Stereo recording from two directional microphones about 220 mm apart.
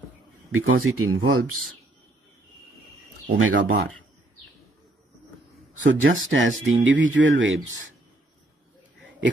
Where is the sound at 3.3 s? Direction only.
65° right (ahead or behind).